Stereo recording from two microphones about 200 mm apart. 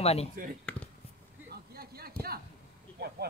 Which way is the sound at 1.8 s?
50° right (ahead or behind).